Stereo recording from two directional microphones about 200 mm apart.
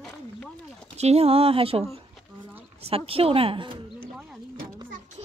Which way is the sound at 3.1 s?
30° right (ahead or behind).